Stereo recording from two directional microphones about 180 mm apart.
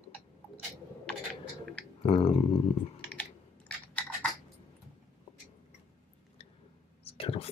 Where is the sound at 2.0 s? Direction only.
35° left (ahead or behind).